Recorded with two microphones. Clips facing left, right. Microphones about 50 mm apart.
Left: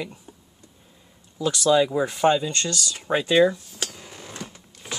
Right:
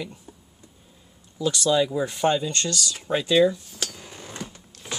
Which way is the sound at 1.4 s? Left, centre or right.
Left.